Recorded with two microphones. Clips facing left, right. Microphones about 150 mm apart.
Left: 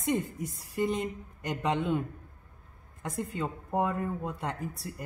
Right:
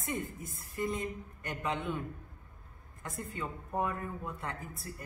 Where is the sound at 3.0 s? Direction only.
90° left.